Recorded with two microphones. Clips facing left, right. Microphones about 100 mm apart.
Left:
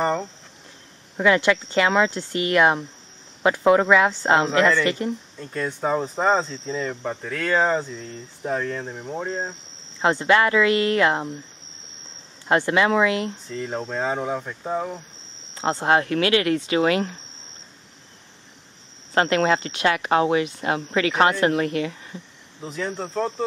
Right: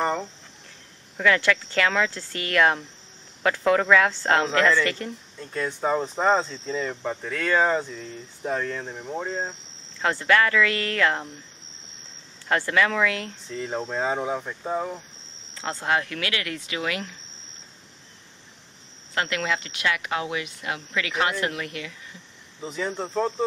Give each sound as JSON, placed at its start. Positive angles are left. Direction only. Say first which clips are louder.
{"t": 0.0, "sound": "speech", "louder": "left 3 dB", "side_deg": 5}
{"t": 1.1, "sound": "speech", "louder": "left 3 dB", "side_deg": 20}
{"t": 5.4, "sound": "speech", "louder": "even", "side_deg": 0}
{"t": 9.9, "sound": "speech", "louder": "left 3 dB", "side_deg": 20}
{"t": 12.4, "sound": "speech", "louder": "left 4 dB", "side_deg": 20}
{"t": 13.5, "sound": "speech", "louder": "left 1 dB", "side_deg": 0}
{"t": 15.5, "sound": "speech", "louder": "left 6 dB", "side_deg": 25}
{"t": 19.1, "sound": "speech", "louder": "left 7 dB", "side_deg": 35}
{"t": 22.6, "sound": "speech", "louder": "left 1 dB", "side_deg": 0}